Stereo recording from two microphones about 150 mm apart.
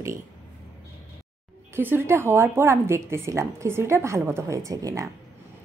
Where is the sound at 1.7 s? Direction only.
15° right (ahead or behind).